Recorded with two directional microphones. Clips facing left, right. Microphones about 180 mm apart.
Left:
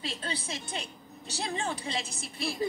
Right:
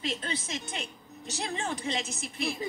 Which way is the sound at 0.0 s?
30° left (ahead or behind).